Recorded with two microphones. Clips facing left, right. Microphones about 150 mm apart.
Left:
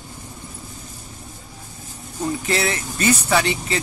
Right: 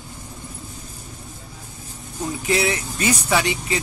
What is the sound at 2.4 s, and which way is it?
Speech, 10° right (ahead or behind).